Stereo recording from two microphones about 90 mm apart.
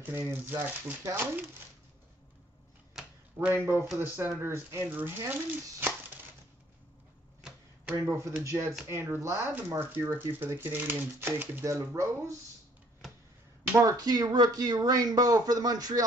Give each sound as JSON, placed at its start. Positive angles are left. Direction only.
{"t": 0.0, "sound": "speech", "side_deg": -25}
{"t": 3.5, "sound": "speech", "side_deg": -30}
{"t": 8.0, "sound": "speech", "side_deg": -35}
{"t": 13.7, "sound": "speech", "side_deg": -40}